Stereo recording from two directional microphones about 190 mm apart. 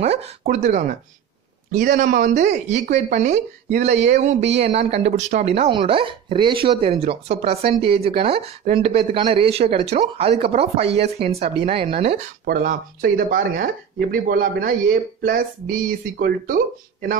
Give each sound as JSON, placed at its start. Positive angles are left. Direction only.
{"t": 0.0, "sound": "speech", "side_deg": -35}
{"t": 12.4, "sound": "speech", "side_deg": -50}